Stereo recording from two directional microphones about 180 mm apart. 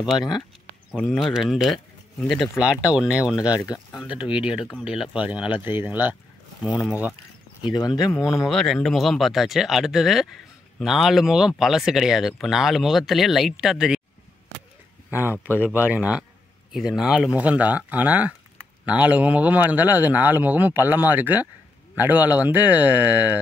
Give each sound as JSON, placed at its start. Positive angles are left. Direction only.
{"t": 0.9, "sound": "speech", "side_deg": 5}
{"t": 3.5, "sound": "speech", "side_deg": 20}
{"t": 4.2, "sound": "speech", "side_deg": -5}
{"t": 7.7, "sound": "speech", "side_deg": 20}
{"t": 8.3, "sound": "speech", "side_deg": 0}
{"t": 15.0, "sound": "speech", "side_deg": -10}